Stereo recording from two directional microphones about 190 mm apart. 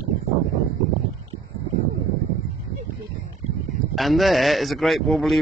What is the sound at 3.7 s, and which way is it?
Speech, centre (ahead or behind).